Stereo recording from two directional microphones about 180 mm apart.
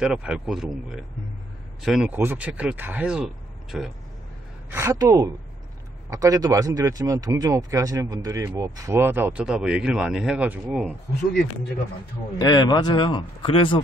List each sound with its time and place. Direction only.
0.0 s speech: 5° right (ahead or behind)
4.6 s a woman's voice: 15° right (ahead or behind)
12.4 s speech: 25° left (ahead or behind)